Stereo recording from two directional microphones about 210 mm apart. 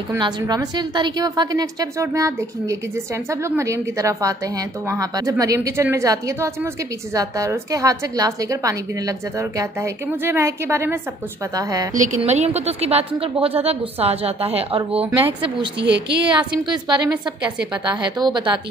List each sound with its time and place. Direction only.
0.1 s a woman's voice: 20° right (ahead or behind)
11.9 s a woman's voice: 35° right (ahead or behind)
15.8 s a woman's voice: 55° right (ahead or behind)
16.3 s a woman's voice: 20° right (ahead or behind)